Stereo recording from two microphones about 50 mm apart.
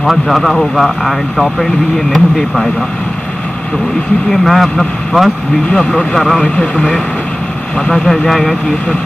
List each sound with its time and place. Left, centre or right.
0.0 s speech: centre
4.3 s speech: centre
6.4 s speech: centre
7.9 s speech: centre